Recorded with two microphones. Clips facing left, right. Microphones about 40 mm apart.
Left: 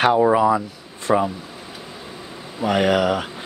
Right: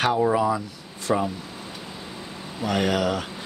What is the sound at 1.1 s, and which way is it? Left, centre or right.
Speech, left.